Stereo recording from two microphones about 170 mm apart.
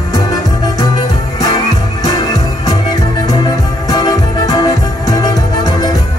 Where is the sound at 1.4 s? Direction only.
25° left (ahead or behind).